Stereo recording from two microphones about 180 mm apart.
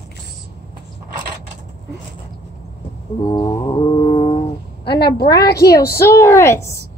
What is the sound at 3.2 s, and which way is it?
Mantra, 30° left (ahead or behind).